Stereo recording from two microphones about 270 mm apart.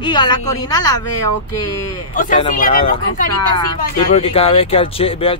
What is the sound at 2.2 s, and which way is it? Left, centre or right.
Speech, left.